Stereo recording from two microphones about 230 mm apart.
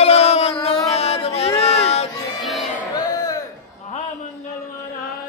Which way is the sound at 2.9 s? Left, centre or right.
Centre.